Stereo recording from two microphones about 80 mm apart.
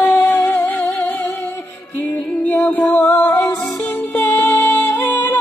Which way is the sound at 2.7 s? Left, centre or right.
Left.